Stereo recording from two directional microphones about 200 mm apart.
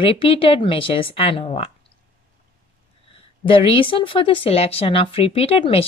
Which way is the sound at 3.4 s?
25° left (ahead or behind).